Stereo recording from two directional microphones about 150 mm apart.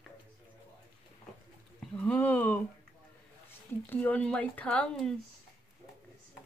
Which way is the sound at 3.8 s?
10° left (ahead or behind).